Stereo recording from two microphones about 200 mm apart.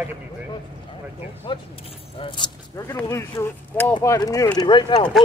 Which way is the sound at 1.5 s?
25° left (ahead or behind).